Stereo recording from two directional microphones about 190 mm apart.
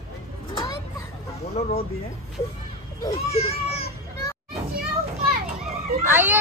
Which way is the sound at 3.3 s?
30° left (ahead or behind).